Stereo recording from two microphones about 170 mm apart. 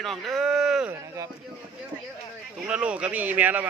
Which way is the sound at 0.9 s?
20° right (ahead or behind).